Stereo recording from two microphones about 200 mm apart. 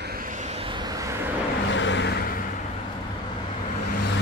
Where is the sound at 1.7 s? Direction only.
65° left (ahead or behind).